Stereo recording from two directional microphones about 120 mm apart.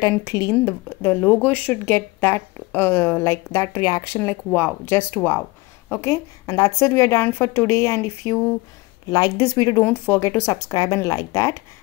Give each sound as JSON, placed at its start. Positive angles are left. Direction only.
{"t": 0.0, "sound": "speech", "side_deg": 25}
{"t": 9.8, "sound": "speech", "side_deg": 15}